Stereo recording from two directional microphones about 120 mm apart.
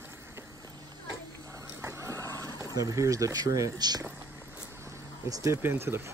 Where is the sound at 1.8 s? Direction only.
25° right (ahead or behind).